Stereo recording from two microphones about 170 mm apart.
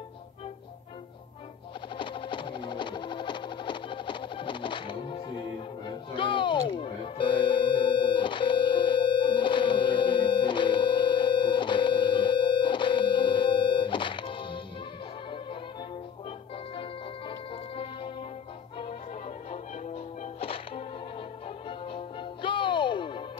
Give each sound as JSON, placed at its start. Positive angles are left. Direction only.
{"t": 2.0, "sound": "music", "side_deg": 30}
{"t": 5.9, "sound": "a sound", "side_deg": 30}
{"t": 19.5, "sound": "music", "side_deg": 40}